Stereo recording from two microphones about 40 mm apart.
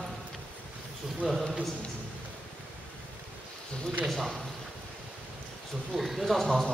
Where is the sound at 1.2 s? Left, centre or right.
Centre.